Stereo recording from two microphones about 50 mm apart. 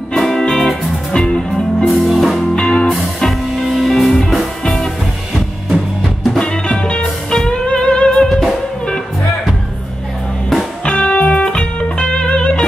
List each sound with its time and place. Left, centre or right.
0.1 s music: centre
1.9 s music: centre
2.5 s music: centre
6.4 s music: centre
10.9 s music: left